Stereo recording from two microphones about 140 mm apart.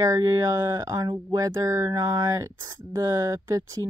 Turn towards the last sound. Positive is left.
turn(degrees=-20)  # may be behind; listen again after turning